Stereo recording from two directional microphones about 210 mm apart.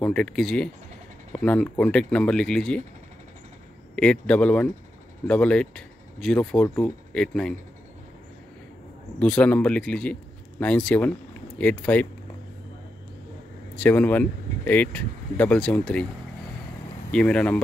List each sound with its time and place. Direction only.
0.0 s speech: 5° left (ahead or behind)
3.9 s speech: 5° left (ahead or behind)
9.2 s speech: 5° left (ahead or behind)
13.7 s speech: 10° left (ahead or behind)
17.1 s speech: 5° left (ahead or behind)